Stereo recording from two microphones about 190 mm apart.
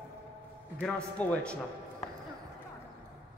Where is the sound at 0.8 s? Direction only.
5° left (ahead or behind).